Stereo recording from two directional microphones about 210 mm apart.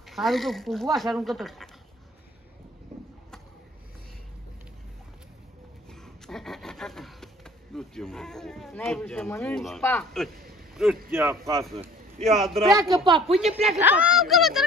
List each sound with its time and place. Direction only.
0.0 s speech: centre (ahead or behind)
6.2 s speech: centre (ahead or behind)
10.7 s a sound: 5° right (ahead or behind)
11.1 s speech: 10° right (ahead or behind)
12.3 s speech: centre (ahead or behind)
12.7 s speech: 20° right (ahead or behind)
13.7 s speech: 10° right (ahead or behind)